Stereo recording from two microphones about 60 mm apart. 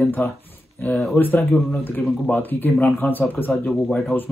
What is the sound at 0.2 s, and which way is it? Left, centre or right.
Speech, left.